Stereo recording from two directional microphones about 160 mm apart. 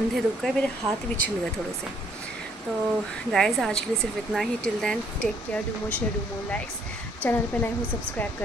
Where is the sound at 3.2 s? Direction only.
Centre (ahead or behind).